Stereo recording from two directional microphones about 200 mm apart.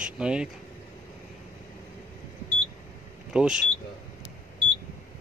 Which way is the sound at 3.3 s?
5° right (ahead or behind).